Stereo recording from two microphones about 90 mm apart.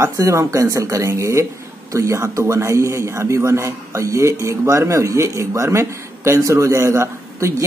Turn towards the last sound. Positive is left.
turn(degrees=-30)  # may be behind; listen again after turning